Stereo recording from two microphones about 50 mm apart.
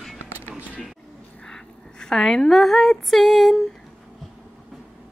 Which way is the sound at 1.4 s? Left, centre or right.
Centre.